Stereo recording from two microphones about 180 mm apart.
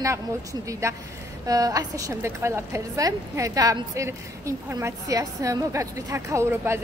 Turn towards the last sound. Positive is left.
turn(degrees=-15)  # may be behind; listen again after turning